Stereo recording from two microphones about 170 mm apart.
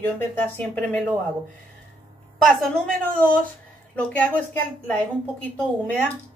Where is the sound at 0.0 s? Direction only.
10° left (ahead or behind).